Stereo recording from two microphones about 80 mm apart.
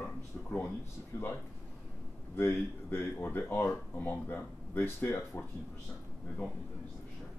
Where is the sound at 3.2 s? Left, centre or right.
Left.